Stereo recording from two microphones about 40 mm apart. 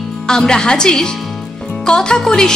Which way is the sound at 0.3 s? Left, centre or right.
Centre.